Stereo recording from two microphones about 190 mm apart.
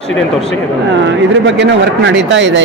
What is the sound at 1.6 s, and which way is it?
A man's voice, 70° right (ahead or behind).